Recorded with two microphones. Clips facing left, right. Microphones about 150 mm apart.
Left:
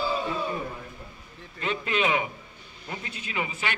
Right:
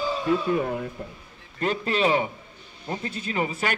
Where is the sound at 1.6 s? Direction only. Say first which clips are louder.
Right 3 dB; 40° right (ahead or behind).